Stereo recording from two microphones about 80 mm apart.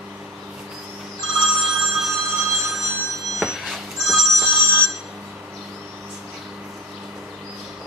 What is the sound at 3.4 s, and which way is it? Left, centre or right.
Telephone bell ringing, centre.